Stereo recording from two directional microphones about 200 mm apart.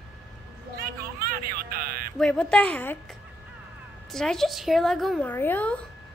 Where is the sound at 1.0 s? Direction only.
45° right (ahead or behind).